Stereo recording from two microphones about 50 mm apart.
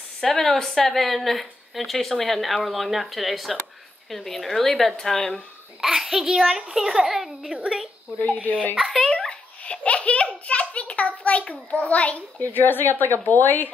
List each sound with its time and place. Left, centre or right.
0.2 s a woman's voice: centre
5.8 s a child's voice: centre
8.2 s speech: left
9.0 s a sound: centre
9.6 s a sound: left
12.5 s speech: left